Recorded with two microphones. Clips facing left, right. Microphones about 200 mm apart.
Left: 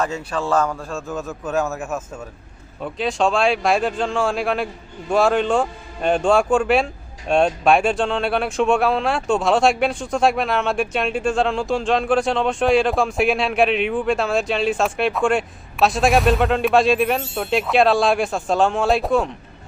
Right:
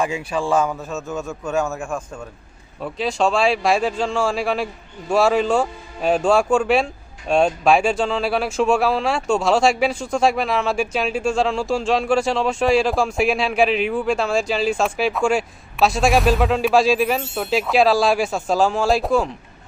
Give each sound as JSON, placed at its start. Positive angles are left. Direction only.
{"t": 0.0, "sound": "a man's voice", "side_deg": -10}